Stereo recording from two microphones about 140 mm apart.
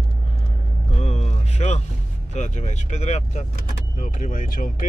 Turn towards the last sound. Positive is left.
turn(degrees=85)